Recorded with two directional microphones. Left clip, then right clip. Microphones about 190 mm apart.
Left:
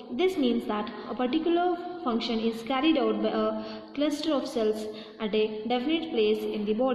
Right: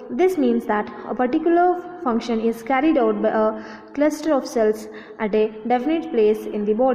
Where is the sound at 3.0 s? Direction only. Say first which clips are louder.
Right 8 dB; 25° right (ahead or behind).